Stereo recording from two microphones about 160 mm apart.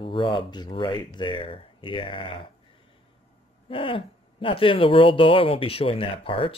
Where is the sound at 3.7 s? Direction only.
35° left (ahead or behind).